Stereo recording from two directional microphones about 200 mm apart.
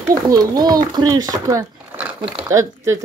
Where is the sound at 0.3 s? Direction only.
20° right (ahead or behind).